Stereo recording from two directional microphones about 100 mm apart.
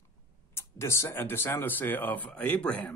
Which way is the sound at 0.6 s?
25° left (ahead or behind).